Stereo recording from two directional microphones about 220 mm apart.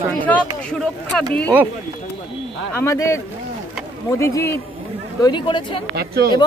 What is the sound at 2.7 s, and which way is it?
Speech, 15° left (ahead or behind).